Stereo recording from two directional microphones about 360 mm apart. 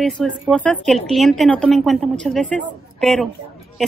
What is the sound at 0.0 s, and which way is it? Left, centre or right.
A woman's voice, centre.